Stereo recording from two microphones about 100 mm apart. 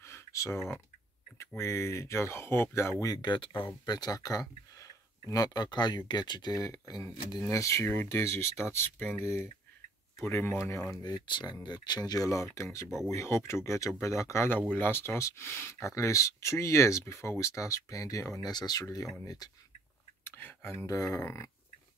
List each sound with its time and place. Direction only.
0.0 s a sound: 30° left (ahead or behind)
1.6 s speech: 25° left (ahead or behind)
3.2 s speech: 50° left (ahead or behind); by 10.5 s 25° left (ahead or behind)
11.0 s speech: 45° left (ahead or behind)
20.2 s a sound: 20° left (ahead or behind)
20.8 s speech: 35° left (ahead or behind)